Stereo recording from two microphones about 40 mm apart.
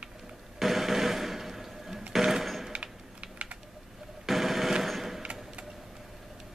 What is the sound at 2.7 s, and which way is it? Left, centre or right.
Typing, right.